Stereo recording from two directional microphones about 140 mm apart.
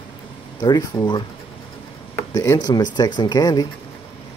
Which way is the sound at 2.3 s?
25° left (ahead or behind).